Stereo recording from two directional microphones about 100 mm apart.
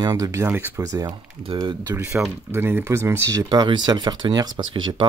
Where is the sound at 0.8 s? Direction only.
40° right (ahead or behind).